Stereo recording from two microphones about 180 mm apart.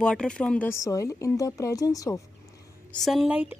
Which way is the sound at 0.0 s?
5° left (ahead or behind).